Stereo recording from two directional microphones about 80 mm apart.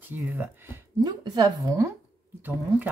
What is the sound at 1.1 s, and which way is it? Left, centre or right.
Speech, right.